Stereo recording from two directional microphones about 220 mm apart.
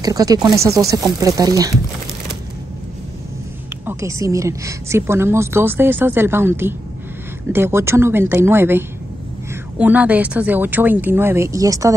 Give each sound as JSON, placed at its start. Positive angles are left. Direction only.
{"t": 0.0, "sound": "a woman's voice", "side_deg": -15}
{"t": 3.8, "sound": "a woman's voice", "side_deg": -15}